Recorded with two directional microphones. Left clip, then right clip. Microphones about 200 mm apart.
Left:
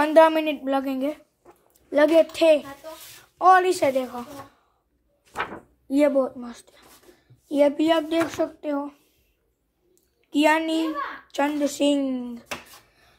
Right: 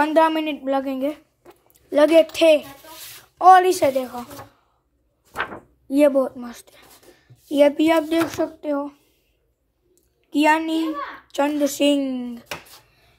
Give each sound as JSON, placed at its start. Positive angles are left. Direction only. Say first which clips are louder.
{"t": 0.0, "sound": "a woman's voice", "louder": "left 1 dB", "side_deg": 0}
{"t": 1.4, "sound": "a sound", "louder": "right 4 dB", "side_deg": -10}
{"t": 3.3, "sound": "a child's voice", "louder": "right 4 dB", "side_deg": -10}
{"t": 10.3, "sound": "a child's voice", "louder": "right 2 dB", "side_deg": 0}